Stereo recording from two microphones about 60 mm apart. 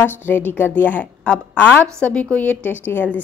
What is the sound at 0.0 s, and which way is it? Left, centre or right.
A woman's voice, left.